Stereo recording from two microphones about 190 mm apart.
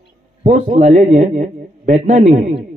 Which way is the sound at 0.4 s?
40° right (ahead or behind).